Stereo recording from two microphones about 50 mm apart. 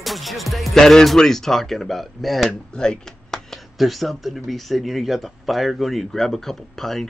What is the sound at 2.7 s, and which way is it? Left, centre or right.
Speech, centre.